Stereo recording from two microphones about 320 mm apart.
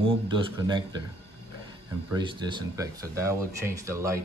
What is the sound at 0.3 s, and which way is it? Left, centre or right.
Speech, centre.